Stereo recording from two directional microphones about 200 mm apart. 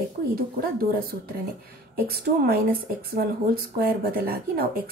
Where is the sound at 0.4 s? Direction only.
50° right (ahead or behind).